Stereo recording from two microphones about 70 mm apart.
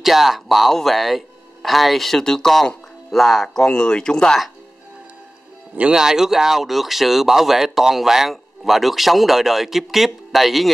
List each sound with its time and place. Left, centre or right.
0.0 s speech: centre
5.8 s speech: centre